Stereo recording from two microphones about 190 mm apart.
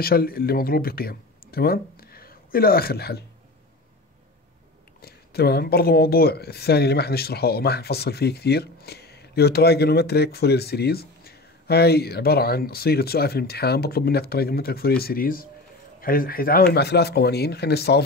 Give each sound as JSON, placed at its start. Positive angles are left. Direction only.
{"t": 0.0, "sound": "speech", "side_deg": 55}
{"t": 5.0, "sound": "speech", "side_deg": 55}